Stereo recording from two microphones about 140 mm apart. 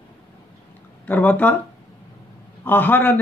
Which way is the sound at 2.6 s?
15° left (ahead or behind).